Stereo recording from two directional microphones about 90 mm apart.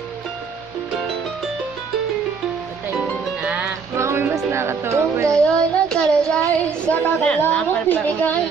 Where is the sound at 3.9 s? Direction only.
30° right (ahead or behind).